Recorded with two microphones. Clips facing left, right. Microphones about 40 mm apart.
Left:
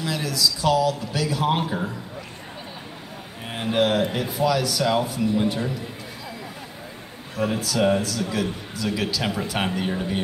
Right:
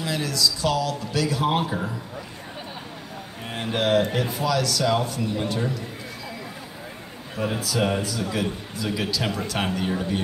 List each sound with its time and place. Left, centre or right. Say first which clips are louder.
0.0 s speech: even; centre
3.4 s speech: left 2 dB; centre
7.3 s a man's voice: left 2 dB; centre
9.3 s speech: left 1 dB; centre